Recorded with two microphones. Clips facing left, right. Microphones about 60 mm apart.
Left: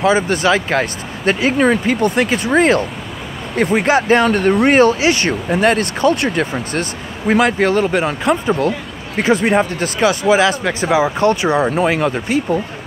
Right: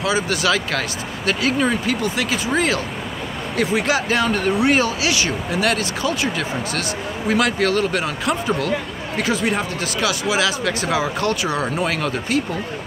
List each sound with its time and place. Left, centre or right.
0.0 s speech: left
3.7 s speech: left
7.3 s speech: left